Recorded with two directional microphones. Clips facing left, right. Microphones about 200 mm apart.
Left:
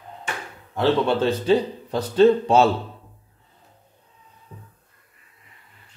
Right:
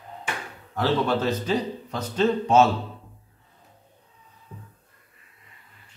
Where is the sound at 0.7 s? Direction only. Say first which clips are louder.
Left 4 dB; 30° left (ahead or behind).